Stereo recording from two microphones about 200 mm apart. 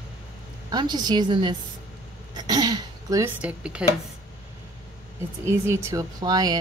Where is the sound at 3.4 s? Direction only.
5° right (ahead or behind).